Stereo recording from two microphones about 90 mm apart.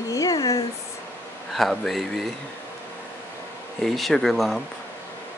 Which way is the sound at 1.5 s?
Centre (ahead or behind).